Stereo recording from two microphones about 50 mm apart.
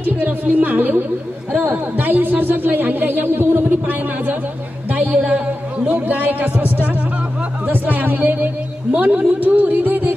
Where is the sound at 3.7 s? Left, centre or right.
Right.